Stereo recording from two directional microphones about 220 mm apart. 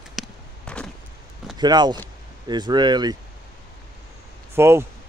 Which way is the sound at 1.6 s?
20° right (ahead or behind).